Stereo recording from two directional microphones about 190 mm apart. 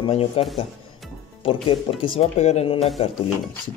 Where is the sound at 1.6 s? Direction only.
30° left (ahead or behind).